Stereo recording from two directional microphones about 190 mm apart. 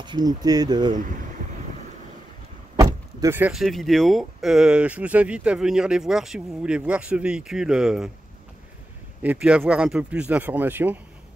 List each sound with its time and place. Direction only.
0.0 s speech: 20° right (ahead or behind)
2.7 s vehicle: 20° right (ahead or behind)
3.6 s speech: centre (ahead or behind)
9.2 s speech: 5° right (ahead or behind)